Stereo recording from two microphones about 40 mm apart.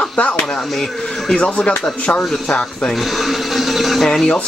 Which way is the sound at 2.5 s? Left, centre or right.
Centre.